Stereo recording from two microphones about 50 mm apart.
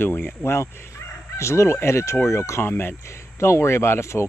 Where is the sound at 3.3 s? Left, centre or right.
Left.